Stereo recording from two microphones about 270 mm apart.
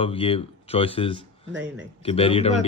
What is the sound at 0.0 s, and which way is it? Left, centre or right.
Speech, centre.